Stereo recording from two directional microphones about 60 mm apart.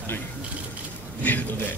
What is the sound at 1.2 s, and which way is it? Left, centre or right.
Speech, left.